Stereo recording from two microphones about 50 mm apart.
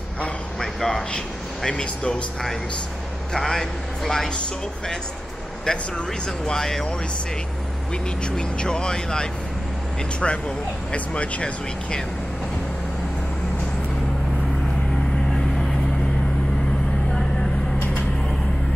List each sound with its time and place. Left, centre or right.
0.6 s a sound: centre
1.6 s speech: centre
3.3 s speech: centre
5.7 s speech: centre
6.5 s speech: centre
8.3 s speech: centre